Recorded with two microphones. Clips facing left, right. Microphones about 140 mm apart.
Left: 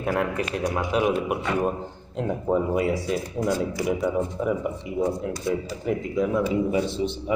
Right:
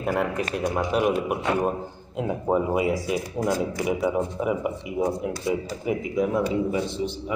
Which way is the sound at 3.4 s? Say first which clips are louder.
Even; 45° right (ahead or behind).